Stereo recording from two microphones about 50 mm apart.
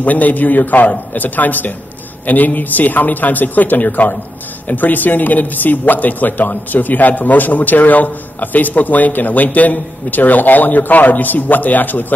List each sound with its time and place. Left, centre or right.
0.0 s speech: left